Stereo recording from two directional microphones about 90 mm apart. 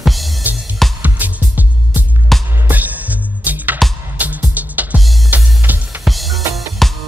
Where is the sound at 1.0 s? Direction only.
20° right (ahead or behind).